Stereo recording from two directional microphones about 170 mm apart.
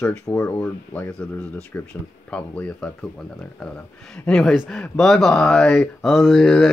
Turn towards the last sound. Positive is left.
turn(degrees=5)  # may be behind; listen again after turning